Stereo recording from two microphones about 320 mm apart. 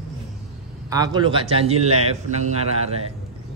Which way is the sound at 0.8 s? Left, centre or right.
Centre.